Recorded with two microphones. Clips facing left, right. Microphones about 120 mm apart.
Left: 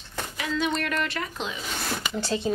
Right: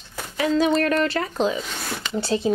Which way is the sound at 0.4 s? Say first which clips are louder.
Right 8 dB; 40° right (ahead or behind).